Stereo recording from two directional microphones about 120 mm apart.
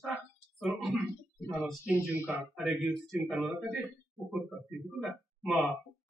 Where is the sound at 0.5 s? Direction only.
5° right (ahead or behind).